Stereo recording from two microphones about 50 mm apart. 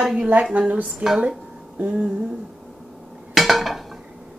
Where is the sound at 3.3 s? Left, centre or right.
Centre.